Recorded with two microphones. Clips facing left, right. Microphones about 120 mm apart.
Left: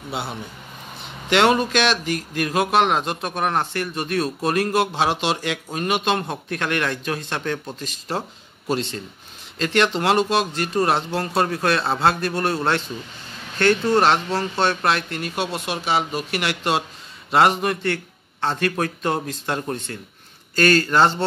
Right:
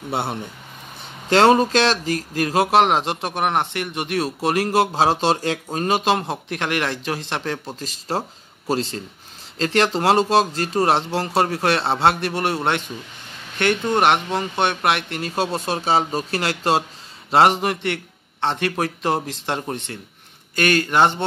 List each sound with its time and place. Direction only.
0.1 s speech: 55° right (ahead or behind)
1.3 s speech: 35° right (ahead or behind); by 21.2 s 20° right (ahead or behind)